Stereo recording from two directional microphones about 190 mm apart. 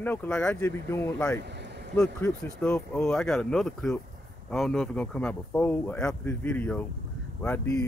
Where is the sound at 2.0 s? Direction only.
5° left (ahead or behind).